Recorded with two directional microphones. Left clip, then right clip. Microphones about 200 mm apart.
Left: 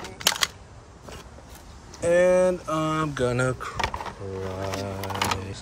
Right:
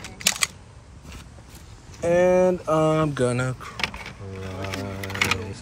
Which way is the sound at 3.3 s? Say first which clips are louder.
Left 3 dB; 15° left (ahead or behind).